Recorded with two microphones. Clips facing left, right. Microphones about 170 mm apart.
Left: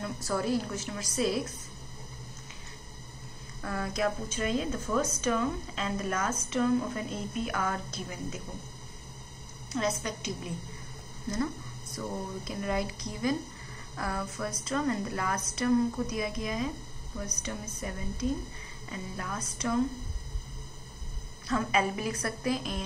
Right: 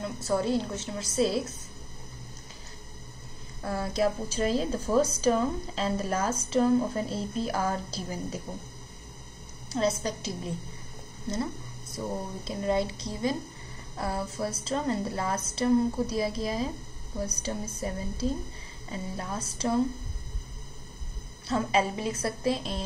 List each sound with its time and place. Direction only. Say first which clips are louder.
0.0 s a woman's voice: right 3 dB; 25° right (ahead or behind)
3.6 s a woman's voice: right 3 dB; 30° right (ahead or behind)
9.7 s a woman's voice: right 4 dB; 30° right (ahead or behind)
21.5 s a woman's voice: right 2 dB; 30° right (ahead or behind)